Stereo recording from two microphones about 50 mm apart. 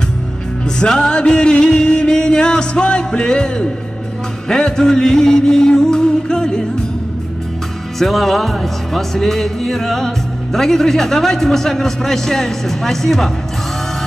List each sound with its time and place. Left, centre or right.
0.7 s music: centre
4.5 s speech: centre
8.0 s speech: centre